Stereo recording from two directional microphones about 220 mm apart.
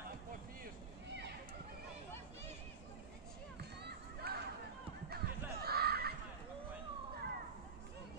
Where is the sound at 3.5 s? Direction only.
45° right (ahead or behind).